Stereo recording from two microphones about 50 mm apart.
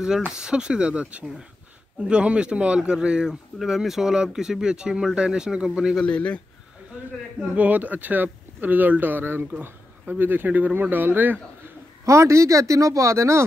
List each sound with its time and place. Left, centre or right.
0.3 s a man's voice: centre
3.6 s a man's voice: centre
6.0 s speech: left
7.5 s speech: right
12.1 s speech: right